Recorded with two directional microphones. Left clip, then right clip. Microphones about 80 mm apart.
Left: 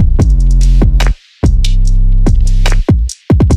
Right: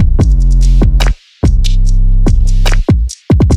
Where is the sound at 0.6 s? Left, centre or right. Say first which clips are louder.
Even; left.